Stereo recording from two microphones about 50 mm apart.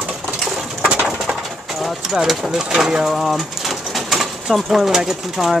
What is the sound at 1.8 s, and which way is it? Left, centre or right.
Speech, centre.